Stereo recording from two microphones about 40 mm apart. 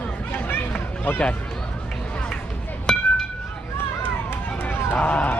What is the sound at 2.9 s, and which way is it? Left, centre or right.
Chink, centre.